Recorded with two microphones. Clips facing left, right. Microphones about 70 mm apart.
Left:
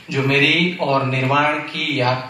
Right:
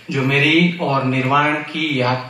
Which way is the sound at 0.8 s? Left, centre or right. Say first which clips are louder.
Even; centre.